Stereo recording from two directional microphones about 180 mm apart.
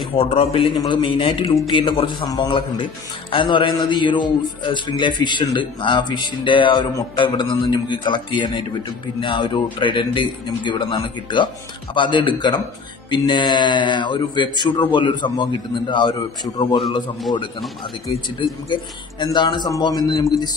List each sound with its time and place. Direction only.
0.1 s a man's voice: 30° left (ahead or behind)
18.7 s a man's voice: 25° left (ahead or behind)